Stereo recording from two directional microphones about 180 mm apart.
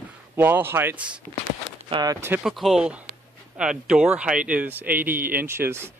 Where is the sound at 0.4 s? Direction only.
10° right (ahead or behind).